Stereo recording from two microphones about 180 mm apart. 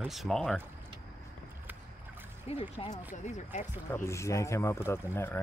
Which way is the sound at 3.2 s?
40° left (ahead or behind).